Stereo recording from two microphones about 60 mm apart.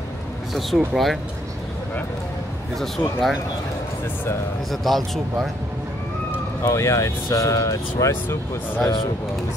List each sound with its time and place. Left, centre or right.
0.6 s speech: centre
3.0 s speech: left
4.6 s speech: centre
6.6 s speech: left
8.1 s speech: left